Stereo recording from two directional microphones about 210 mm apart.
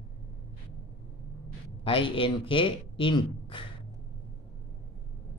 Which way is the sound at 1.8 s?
25° left (ahead or behind).